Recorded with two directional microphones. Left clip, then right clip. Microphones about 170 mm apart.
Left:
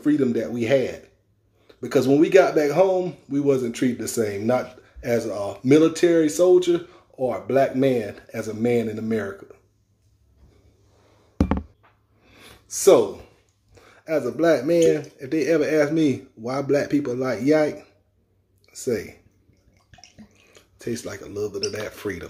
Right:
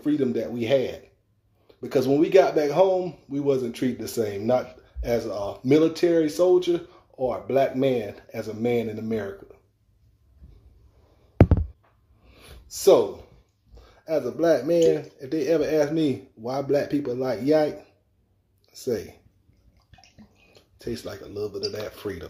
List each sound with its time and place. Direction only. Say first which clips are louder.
0.0 s speech: left 3 dB; 15° left (ahead or behind)
12.3 s a sound: left 3 dB; 25° left (ahead or behind)
13.7 s speech: left 2 dB; 15° left (ahead or behind)
19.9 s bathtub: left 4 dB; 5° left (ahead or behind)
21.0 s speech: left 3 dB; 20° left (ahead or behind)